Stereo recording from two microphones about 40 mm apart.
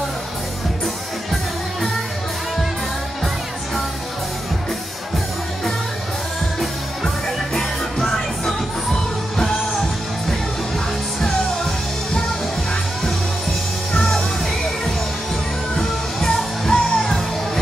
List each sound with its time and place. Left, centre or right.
7.5 s music: centre
13.9 s music: centre
15.7 s music: centre